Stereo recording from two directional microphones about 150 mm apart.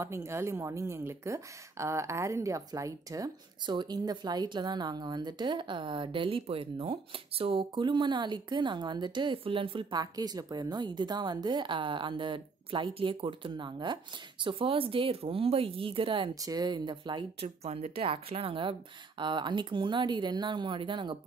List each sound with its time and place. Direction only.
0.0 s a woman's voice: 20° right (ahead or behind); by 16.3 s 35° right (ahead or behind)
16.3 s speech: 25° right (ahead or behind)